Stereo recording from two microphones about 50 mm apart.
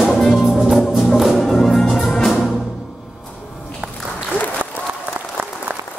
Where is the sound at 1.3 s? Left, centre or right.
Centre.